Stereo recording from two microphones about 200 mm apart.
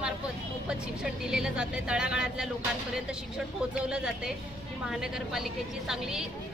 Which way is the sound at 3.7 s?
5° right (ahead or behind).